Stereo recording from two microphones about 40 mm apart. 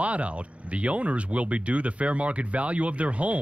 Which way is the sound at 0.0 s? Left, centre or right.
Right.